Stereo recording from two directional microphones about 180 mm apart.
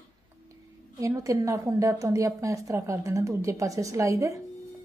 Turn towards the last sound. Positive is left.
turn(degrees=-15)  # may be behind; listen again after turning